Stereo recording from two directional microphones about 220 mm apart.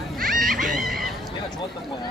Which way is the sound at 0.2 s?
40° right (ahead or behind).